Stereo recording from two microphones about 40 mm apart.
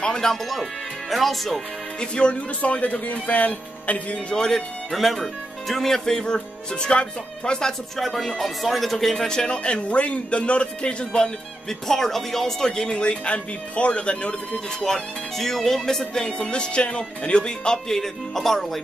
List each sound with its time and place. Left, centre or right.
0.0 s speech: centre
2.0 s speech: left
4.3 s speech: centre
4.9 s speech: centre; by 7.7 s left
8.0 s a man's voice: centre; by 11.3 s left
11.9 s speech: centre; by 14.3 s left
14.9 s speech: centre
16.3 s a man's voice: left
17.9 s speech: centre